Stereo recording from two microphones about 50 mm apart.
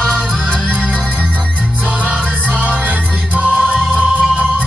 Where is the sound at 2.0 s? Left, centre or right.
Right.